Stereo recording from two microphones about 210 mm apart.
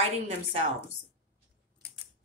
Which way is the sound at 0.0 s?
25° right (ahead or behind).